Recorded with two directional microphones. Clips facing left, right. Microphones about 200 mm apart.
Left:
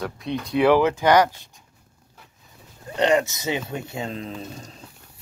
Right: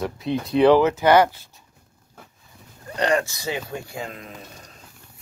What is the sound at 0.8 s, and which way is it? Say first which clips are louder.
Speech: right 1 dB; 15° left (ahead or behind).